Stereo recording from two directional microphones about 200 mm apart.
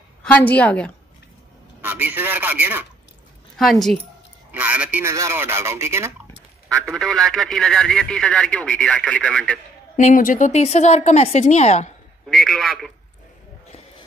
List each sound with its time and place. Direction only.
0.2 s a woman's voice: 10° left (ahead or behind)
1.8 s speech: 10° right (ahead or behind)
3.5 s a man's voice: centre (ahead or behind)
6.7 s a man's voice: 5° left (ahead or behind)
9.9 s speech: 40° left (ahead or behind)
12.3 s a man's voice: centre (ahead or behind)